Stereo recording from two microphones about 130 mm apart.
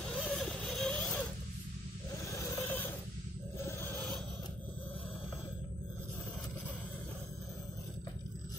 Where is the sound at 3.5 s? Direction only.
20° left (ahead or behind).